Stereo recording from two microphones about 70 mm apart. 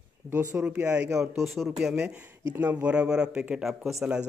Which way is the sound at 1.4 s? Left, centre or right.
Centre.